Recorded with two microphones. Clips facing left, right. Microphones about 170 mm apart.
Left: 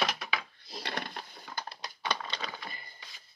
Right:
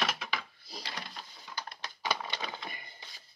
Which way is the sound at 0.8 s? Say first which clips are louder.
Left 8 dB; 60° left (ahead or behind).